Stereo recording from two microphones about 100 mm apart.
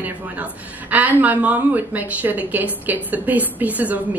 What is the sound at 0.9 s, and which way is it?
A woman's voice, 15° right (ahead or behind).